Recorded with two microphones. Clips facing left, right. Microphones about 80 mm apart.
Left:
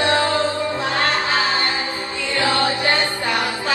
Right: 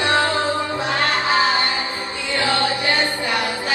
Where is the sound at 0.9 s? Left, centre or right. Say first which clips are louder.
Right 2 dB; right.